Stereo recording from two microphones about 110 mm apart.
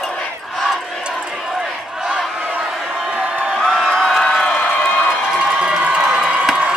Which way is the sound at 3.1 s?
10° right (ahead or behind).